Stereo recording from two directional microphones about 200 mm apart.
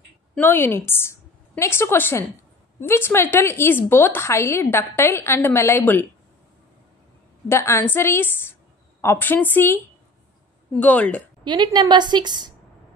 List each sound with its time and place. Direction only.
0.3 s a woman's voice: 10° left (ahead or behind)
7.4 s a woman's voice: 15° left (ahead or behind)
10.8 s a woman's voice: 5° left (ahead or behind)
11.4 s a woman's voice: 20° right (ahead or behind)